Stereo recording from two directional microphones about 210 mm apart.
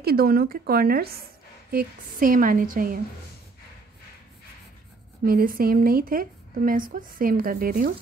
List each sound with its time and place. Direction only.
0.0 s a woman's voice: 45° right (ahead or behind)
5.2 s speech: 45° right (ahead or behind)